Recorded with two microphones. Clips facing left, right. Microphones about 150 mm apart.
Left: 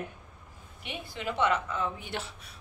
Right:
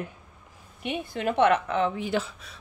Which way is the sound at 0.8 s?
55° right (ahead or behind).